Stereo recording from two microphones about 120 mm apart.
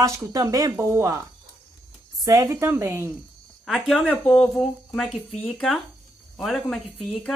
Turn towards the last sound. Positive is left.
turn(degrees=5)  # may be behind; listen again after turning